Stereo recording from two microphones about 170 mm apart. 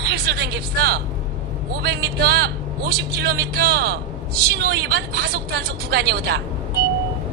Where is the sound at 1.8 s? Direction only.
70° right (ahead or behind).